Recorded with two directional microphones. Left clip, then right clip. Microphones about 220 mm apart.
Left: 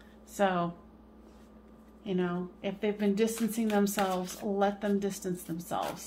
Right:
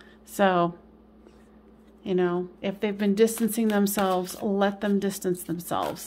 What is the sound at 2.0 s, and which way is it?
A woman's voice, 45° right (ahead or behind).